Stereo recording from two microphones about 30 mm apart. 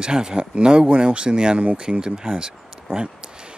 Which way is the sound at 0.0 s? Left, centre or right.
Right.